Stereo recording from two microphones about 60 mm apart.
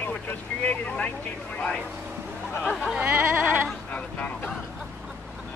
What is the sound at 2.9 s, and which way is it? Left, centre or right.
Music, right.